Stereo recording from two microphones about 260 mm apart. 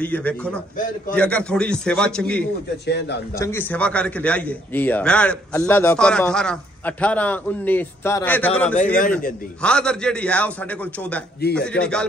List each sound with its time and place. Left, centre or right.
0.0 s a man's voice: centre
2.9 s a man's voice: left
3.3 s a man's voice: centre
11.4 s a man's voice: left
11.8 s a man's voice: centre